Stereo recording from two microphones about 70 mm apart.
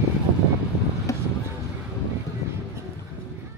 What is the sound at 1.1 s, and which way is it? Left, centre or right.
Vehicle, left.